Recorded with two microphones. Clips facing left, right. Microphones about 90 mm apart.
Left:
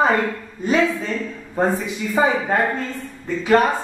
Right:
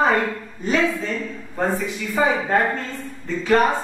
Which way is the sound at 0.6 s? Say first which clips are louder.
Left 2 dB; 15° left (ahead or behind).